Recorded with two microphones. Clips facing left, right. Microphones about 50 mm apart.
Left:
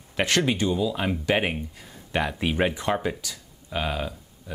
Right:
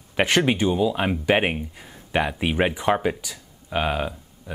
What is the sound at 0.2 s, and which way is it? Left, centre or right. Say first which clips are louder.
Speech: right 3 dB; right.